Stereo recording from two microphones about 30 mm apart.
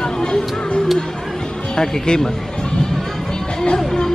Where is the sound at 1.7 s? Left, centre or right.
Left.